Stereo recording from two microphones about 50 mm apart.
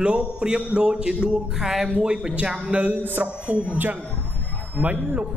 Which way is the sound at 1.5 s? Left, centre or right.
Centre.